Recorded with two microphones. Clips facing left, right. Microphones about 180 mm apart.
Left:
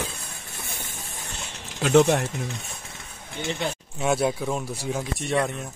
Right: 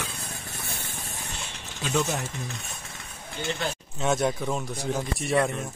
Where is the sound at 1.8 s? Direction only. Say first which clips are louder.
Left 9 dB; 65° left (ahead or behind).